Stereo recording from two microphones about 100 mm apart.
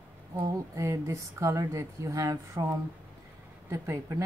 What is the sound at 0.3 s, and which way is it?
A woman's voice, 30° right (ahead or behind).